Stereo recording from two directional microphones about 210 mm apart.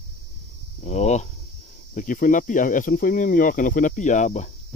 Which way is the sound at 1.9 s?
40° left (ahead or behind).